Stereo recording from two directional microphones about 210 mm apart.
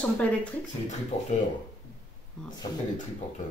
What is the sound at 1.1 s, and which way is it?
Speech, 35° left (ahead or behind).